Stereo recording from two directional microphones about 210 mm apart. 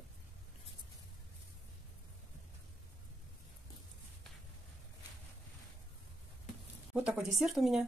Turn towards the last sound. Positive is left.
turn(degrees=0)  # may be behind; listen again after turning